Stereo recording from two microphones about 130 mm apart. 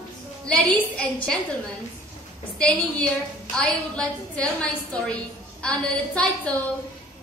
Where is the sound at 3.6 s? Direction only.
10° left (ahead or behind).